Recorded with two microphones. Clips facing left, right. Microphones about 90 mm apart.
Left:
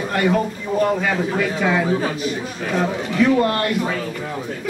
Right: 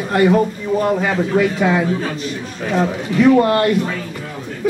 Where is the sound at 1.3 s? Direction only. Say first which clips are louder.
Right 6 dB; 5° right (ahead or behind).